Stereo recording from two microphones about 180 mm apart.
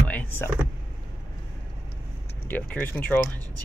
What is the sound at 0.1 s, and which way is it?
Power windows, 10° left (ahead or behind).